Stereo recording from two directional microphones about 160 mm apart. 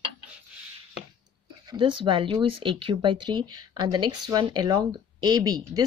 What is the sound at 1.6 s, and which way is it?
Speech, 30° right (ahead or behind).